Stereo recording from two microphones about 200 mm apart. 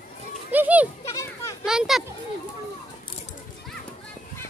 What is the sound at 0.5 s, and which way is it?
Goat, 10° right (ahead or behind).